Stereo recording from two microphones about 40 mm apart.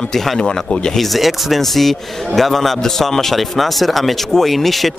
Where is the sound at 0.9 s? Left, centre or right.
Centre.